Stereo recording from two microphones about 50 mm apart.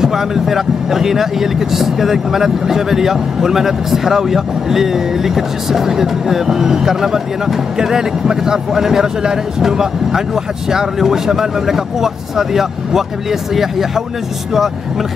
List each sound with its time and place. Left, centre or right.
0.0 s speech: centre